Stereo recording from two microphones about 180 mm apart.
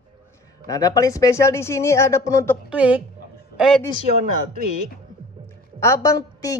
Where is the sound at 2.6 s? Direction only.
5° right (ahead or behind).